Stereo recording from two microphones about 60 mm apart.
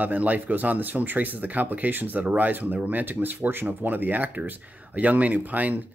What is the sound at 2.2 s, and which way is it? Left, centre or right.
Speech, right.